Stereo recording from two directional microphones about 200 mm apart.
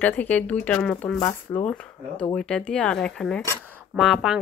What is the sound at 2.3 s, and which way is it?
Speech, 5° left (ahead or behind).